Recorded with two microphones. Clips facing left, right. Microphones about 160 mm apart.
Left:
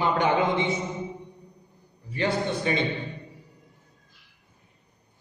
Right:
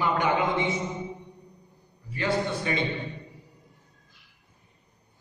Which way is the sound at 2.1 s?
20° left (ahead or behind).